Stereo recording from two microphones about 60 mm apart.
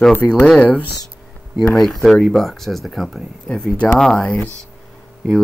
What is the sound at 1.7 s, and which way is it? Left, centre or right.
Speech, centre.